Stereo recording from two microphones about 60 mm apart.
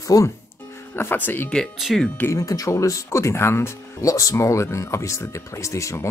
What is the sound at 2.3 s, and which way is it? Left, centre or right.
Speech, left.